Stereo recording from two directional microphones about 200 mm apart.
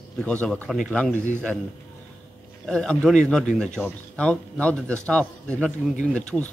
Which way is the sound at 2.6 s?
5° left (ahead or behind).